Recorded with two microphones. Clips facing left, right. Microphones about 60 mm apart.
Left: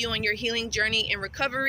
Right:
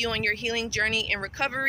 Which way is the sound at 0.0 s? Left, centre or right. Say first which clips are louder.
Right 1 dB; right.